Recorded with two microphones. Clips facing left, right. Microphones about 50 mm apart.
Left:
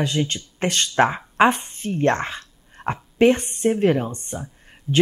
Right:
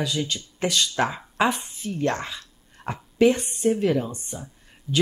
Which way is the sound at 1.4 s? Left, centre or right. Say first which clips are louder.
Left 6 dB; left.